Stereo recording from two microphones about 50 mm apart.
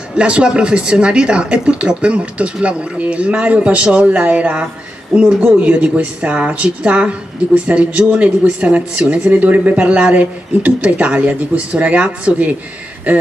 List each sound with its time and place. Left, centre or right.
0.1 s speech: centre